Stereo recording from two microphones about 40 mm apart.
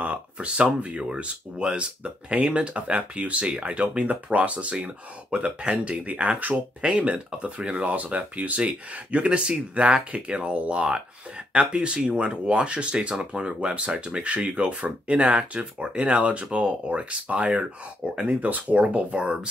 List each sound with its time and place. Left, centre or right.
0.0 s speech: right